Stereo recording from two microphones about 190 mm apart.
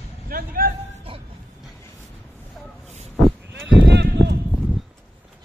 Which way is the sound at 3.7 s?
65° right (ahead or behind).